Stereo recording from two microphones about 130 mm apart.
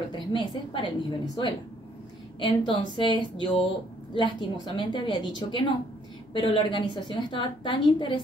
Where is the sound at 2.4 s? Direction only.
40° left (ahead or behind).